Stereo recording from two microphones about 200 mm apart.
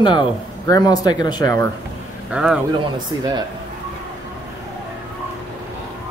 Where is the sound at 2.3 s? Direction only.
5° right (ahead or behind).